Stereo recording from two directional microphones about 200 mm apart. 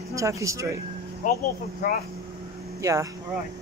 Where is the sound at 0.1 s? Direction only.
15° right (ahead or behind).